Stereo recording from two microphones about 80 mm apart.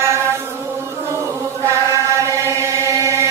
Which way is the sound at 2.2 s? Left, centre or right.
Right.